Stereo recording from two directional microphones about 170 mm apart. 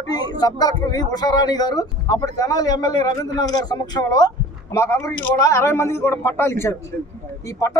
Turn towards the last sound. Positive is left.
turn(degrees=20)  # may be behind; listen again after turning